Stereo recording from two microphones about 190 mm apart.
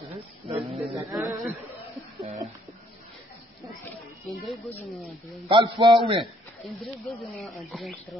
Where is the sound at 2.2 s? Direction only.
40° right (ahead or behind).